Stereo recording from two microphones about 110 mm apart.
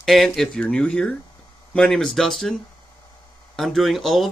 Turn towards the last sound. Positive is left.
turn(degrees=0)  # may be behind; listen again after turning